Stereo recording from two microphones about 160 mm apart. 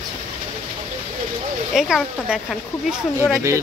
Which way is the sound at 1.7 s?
5° right (ahead or behind).